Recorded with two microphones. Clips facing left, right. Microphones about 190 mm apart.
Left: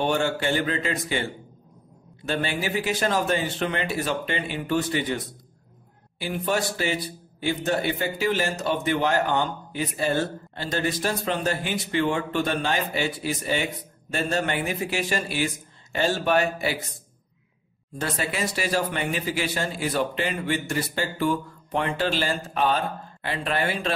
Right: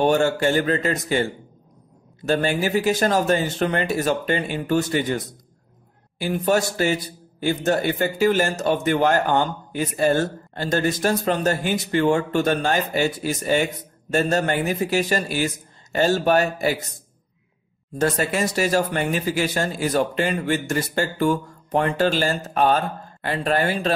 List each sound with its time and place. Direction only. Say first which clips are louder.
0.0 s a man's voice: right 6 dB; 45° right (ahead or behind)
2.2 s a man's voice: right 6 dB; 45° right (ahead or behind)
17.9 s a man's voice: right 7 dB; 45° right (ahead or behind)